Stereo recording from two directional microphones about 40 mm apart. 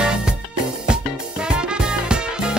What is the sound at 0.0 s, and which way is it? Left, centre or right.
Music, right.